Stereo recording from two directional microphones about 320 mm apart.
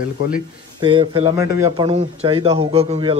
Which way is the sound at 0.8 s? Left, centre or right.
Centre.